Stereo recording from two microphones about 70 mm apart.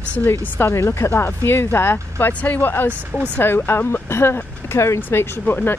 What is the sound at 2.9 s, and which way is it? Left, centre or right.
Speech, right.